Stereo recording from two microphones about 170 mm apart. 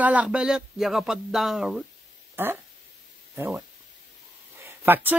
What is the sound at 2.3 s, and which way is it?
Speech, 15° right (ahead or behind).